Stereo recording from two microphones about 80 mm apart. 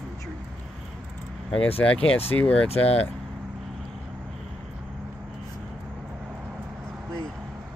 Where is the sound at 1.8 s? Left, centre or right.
Centre.